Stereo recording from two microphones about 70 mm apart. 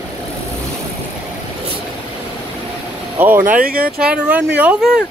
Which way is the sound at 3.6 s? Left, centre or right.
Centre.